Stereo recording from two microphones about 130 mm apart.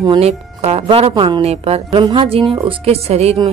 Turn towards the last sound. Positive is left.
turn(degrees=-55)  # may be behind; listen again after turning